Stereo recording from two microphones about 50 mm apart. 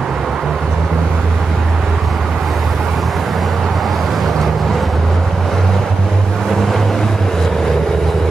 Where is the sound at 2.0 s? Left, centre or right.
Centre.